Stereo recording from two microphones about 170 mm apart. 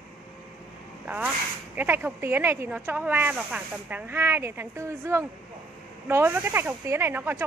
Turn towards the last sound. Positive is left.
turn(degrees=-15)  # may be behind; listen again after turning